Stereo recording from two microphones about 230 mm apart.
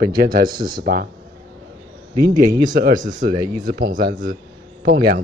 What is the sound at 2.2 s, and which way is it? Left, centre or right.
Speech, right.